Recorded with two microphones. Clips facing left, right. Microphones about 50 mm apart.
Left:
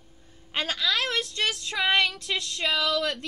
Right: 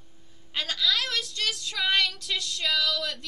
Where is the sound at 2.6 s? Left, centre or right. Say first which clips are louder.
Left 2 dB; left.